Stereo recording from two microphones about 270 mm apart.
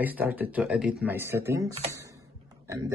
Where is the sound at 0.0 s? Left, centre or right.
Centre.